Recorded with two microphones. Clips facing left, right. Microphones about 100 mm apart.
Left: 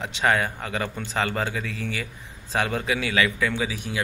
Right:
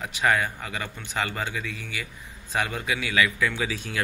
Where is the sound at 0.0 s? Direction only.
25° left (ahead or behind).